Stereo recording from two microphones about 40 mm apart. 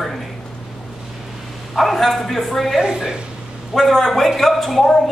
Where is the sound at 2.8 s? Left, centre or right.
Centre.